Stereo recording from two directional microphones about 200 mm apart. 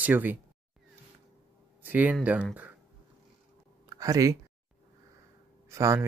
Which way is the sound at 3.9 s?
15° right (ahead or behind).